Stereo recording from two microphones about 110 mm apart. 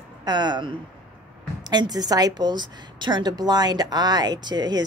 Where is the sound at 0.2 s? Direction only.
40° right (ahead or behind).